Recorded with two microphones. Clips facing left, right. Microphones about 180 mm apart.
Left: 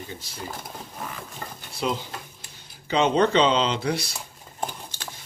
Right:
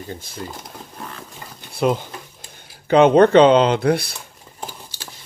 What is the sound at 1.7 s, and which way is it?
Speech, 55° right (ahead or behind).